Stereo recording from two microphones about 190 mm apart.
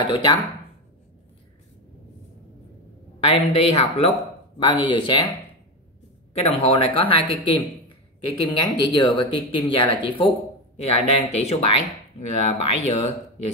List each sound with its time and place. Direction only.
0.0 s speech: 25° left (ahead or behind)
3.3 s speech: 30° left (ahead or behind)
6.3 s speech: 30° left (ahead or behind)